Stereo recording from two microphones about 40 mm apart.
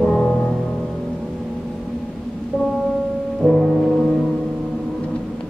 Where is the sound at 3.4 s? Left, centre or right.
Left.